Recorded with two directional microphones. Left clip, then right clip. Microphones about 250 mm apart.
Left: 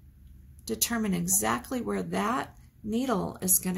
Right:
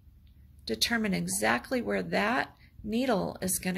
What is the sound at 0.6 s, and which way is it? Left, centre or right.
A woman's voice, centre.